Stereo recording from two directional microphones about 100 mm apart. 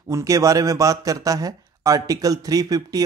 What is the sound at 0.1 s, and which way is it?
A man's voice, 35° right (ahead or behind).